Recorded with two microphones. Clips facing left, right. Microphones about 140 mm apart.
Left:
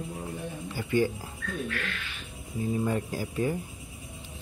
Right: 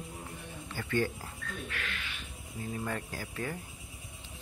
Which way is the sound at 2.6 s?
15° left (ahead or behind).